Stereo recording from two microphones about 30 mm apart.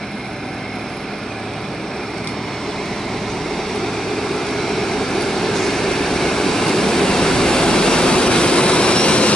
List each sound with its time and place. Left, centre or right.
4.4 s vehicle: centre; by 9.3 s left